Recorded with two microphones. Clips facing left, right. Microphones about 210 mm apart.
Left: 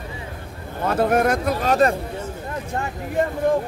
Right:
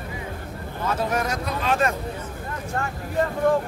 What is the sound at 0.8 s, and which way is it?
Speech, 60° left (ahead or behind).